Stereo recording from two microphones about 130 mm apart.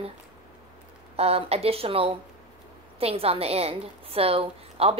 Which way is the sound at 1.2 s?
50° right (ahead or behind).